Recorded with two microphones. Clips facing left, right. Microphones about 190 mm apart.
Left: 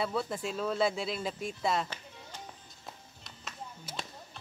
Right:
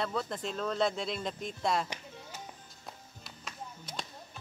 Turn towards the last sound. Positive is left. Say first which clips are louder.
# even
turn(degrees=0)  # may be behind; listen again after turning